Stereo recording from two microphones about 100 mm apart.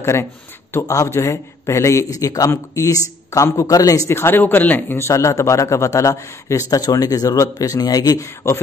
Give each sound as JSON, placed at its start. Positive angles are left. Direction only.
{"t": 0.0, "sound": "speech", "side_deg": 30}